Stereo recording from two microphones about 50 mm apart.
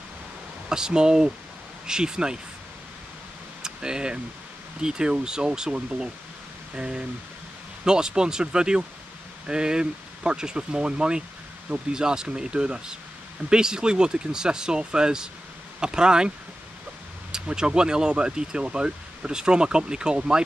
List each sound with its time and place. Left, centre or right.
0.7 s speech: centre
3.6 s speech: centre
6.7 s pink noise: right
7.8 s speech: centre